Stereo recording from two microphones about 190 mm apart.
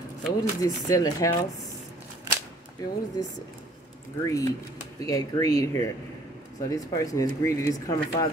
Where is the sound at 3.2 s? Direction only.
20° left (ahead or behind).